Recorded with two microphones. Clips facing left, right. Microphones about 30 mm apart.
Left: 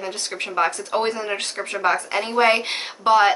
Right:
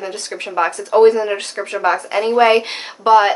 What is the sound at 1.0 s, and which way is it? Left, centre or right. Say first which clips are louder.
Speech: right 11 dB; centre.